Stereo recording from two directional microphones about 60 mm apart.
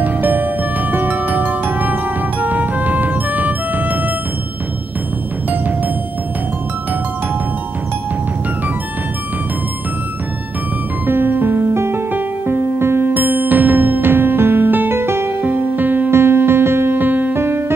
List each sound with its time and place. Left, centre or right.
0.0 s music: right
11.1 s music: right
13.1 s music: right
16.1 s music: right
17.4 s music: right